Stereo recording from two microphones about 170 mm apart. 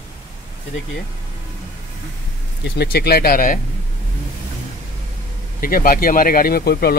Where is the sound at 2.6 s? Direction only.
70° left (ahead or behind).